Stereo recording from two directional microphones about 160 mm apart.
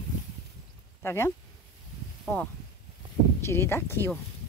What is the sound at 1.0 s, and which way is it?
Speech, 15° left (ahead or behind).